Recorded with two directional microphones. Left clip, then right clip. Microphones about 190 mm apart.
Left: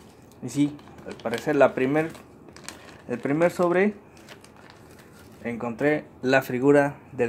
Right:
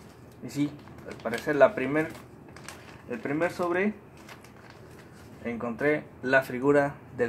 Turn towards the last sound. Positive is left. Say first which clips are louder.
# left 4 dB
turn(degrees=40)  # may be behind; listen again after turning